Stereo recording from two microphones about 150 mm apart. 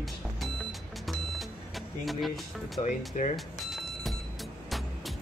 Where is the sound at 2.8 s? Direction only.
55° left (ahead or behind).